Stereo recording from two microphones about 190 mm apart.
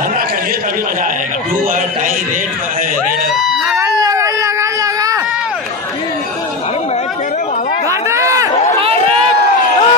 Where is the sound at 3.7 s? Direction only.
15° right (ahead or behind).